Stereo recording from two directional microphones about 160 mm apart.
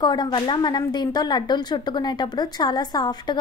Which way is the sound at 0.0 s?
25° left (ahead or behind).